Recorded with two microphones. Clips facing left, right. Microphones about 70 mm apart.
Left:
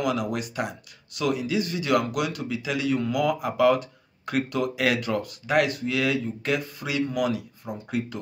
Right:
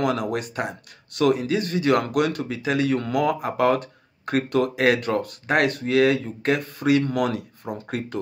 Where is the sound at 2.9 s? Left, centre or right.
Right.